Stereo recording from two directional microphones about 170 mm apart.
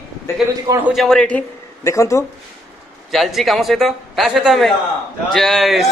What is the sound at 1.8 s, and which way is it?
Speech, 15° left (ahead or behind).